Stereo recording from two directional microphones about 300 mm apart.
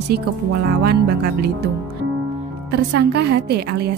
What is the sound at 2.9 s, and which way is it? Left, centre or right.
Speech, right.